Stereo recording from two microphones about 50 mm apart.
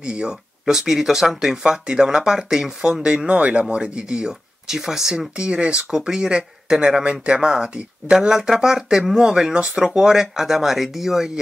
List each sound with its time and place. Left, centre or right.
0.0 s speech: right
0.7 s speech: centre
5.3 s speech: centre